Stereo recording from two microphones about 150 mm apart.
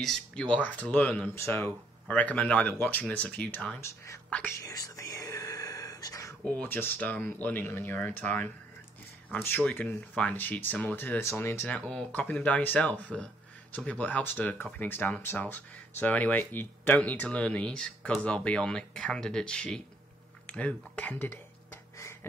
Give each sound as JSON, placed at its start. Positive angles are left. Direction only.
{"t": 0.0, "sound": "speech", "side_deg": 5}
{"t": 4.6, "sound": "whispering", "side_deg": 20}
{"t": 6.6, "sound": "speech", "side_deg": 15}